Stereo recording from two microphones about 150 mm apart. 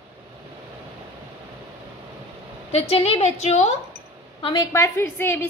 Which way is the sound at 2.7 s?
40° left (ahead or behind).